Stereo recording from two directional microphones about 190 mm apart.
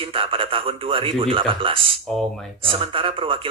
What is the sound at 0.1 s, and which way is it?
Speech, 30° right (ahead or behind).